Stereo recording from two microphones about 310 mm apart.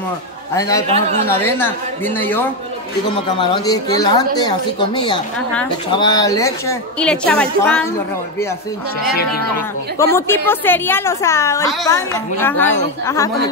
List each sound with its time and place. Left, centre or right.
0.6 s a woman's voice: centre
0.8 s speech: centre
1.2 s a woman's voice: centre
9.9 s a woman's voice: centre